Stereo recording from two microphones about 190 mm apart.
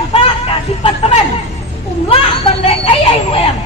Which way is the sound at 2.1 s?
30° left (ahead or behind).